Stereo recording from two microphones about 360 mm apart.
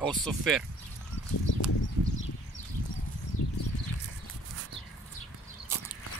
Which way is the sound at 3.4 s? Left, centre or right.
Left.